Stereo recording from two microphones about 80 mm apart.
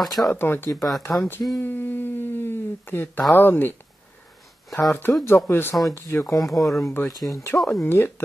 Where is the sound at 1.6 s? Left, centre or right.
Left.